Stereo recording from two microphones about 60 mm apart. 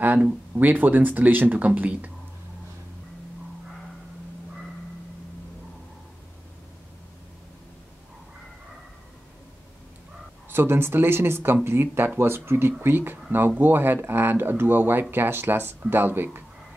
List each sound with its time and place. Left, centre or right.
0.0 s speech: right
10.5 s speech: right